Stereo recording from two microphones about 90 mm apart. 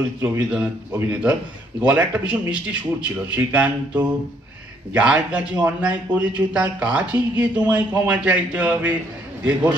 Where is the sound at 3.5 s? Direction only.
15° right (ahead or behind).